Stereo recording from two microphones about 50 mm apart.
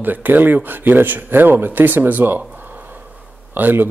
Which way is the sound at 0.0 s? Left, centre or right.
Right.